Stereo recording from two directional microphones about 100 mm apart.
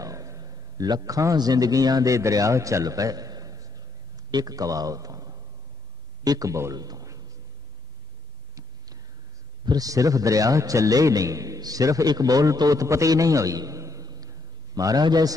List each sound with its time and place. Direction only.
0.0 s a man's voice: 35° right (ahead or behind)
8.5 s a sound: 40° right (ahead or behind)
9.7 s a man's voice: 35° right (ahead or behind)